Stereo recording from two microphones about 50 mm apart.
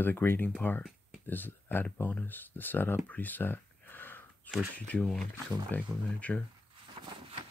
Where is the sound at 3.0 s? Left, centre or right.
Left.